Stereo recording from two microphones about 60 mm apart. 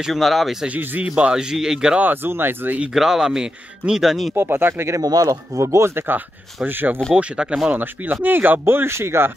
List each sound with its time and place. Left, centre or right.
0.0 s speech: centre
0.7 s speech: right
1.0 s speech: centre
2.0 s speech: right
2.9 s speech: centre
4.4 s speech: right
5.0 s speech: right
6.0 s speech: right
7.2 s speech: centre
7.7 s speech: right